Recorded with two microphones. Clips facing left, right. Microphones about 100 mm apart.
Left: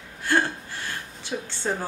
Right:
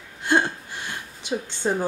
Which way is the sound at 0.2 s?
20° right (ahead or behind).